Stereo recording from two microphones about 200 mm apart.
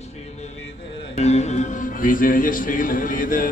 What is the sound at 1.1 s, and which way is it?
Speech, 35° left (ahead or behind).